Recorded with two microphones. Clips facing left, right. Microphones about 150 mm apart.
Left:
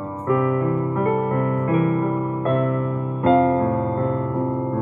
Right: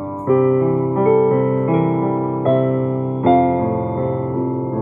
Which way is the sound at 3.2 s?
25° right (ahead or behind).